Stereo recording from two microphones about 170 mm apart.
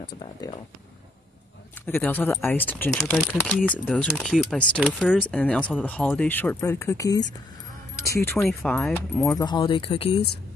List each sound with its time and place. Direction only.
0.0 s speech: 25° left (ahead or behind)
1.9 s speech: 10° left (ahead or behind)
9.4 s speech: 25° left (ahead or behind)